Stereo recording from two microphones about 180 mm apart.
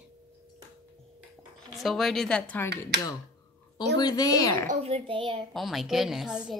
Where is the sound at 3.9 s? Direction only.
20° left (ahead or behind).